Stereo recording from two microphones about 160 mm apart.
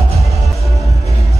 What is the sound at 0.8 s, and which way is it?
Music, 20° right (ahead or behind).